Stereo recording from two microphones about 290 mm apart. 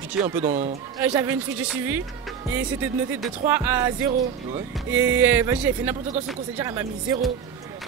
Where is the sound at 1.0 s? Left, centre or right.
Centre.